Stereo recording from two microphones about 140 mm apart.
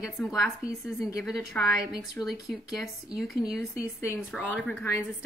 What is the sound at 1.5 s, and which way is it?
Speech, 10° left (ahead or behind).